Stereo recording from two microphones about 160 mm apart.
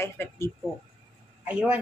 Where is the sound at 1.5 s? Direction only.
10° right (ahead or behind).